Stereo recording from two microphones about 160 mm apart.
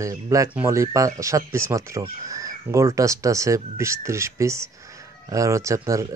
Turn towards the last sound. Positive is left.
turn(degrees=-20)  # may be behind; listen again after turning